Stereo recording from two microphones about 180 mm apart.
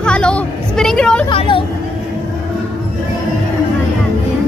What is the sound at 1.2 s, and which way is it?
Vehicle, 30° left (ahead or behind).